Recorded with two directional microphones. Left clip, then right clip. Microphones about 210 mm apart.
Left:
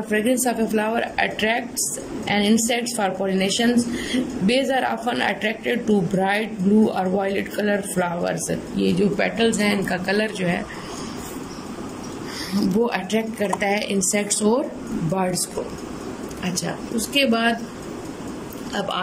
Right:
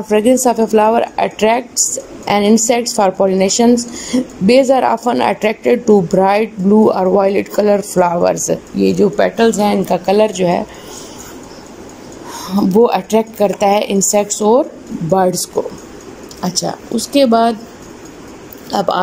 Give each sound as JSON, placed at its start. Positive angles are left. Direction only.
{"t": 0.1, "sound": "a woman's voice", "side_deg": -10}
{"t": 12.8, "sound": "a woman's voice", "side_deg": -15}
{"t": 16.5, "sound": "speech", "side_deg": -15}
{"t": 18.7, "sound": "speech", "side_deg": -25}